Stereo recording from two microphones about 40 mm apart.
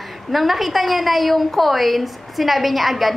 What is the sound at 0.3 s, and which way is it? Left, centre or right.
A woman's voice, centre.